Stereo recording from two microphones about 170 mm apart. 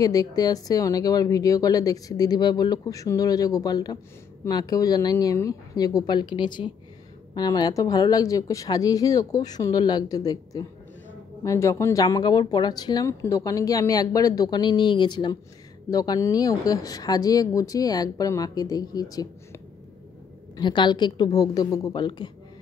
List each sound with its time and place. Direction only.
0.0 s a woman's voice: 20° left (ahead or behind)